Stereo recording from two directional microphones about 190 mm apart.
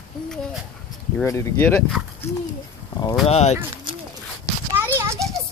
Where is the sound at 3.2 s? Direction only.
35° left (ahead or behind).